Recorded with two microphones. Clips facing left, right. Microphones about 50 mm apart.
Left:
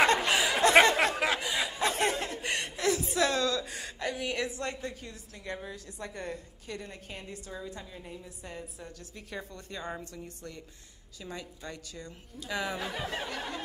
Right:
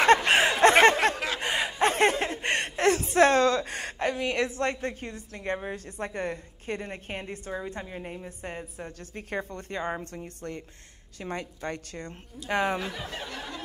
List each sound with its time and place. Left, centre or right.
0.1 s a sound: right
1.1 s snicker: centre
1.4 s snicker: right
1.8 s a woman's voice: right
13.0 s speech: left
13.3 s a sound: centre